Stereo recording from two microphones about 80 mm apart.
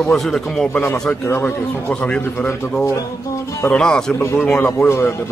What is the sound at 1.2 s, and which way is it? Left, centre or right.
A man's voice, left.